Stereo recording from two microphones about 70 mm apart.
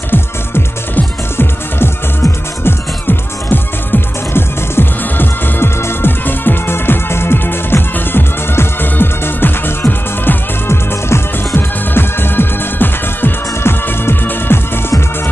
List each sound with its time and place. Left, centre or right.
0.1 s music: left